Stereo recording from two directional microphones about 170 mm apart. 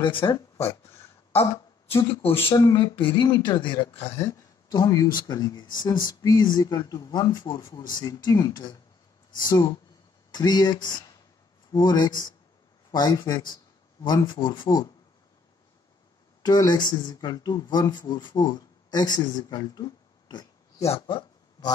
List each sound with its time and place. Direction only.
0.0 s speech: 25° left (ahead or behind)
1.9 s speech: 35° left (ahead or behind)
4.1 s speech: 20° left (ahead or behind)
16.4 s speech: 20° left (ahead or behind)
20.9 s a sound: 25° left (ahead or behind)